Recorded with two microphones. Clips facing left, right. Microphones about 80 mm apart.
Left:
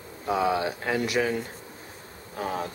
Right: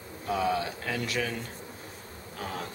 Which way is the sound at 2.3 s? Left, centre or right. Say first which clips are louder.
Left 6 dB; left.